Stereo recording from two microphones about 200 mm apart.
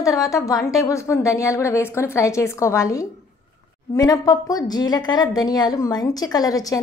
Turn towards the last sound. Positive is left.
turn(degrees=15)  # may be behind; listen again after turning